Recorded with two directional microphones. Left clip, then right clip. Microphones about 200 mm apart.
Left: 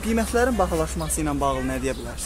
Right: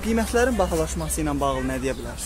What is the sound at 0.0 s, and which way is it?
Speech, 5° left (ahead or behind).